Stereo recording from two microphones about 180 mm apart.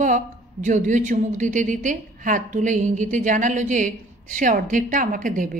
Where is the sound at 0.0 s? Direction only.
45° right (ahead or behind).